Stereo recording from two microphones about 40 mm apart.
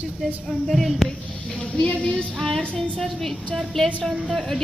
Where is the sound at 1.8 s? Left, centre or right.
Left.